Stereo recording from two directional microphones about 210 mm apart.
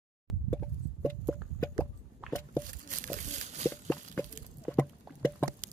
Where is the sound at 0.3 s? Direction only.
5° left (ahead or behind).